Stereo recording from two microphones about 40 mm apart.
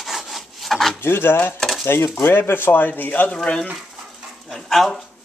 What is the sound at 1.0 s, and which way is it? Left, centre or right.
Dishes, left.